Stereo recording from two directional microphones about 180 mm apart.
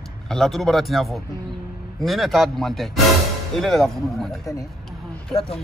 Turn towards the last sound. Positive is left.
turn(degrees=30)  # may be behind; listen again after turning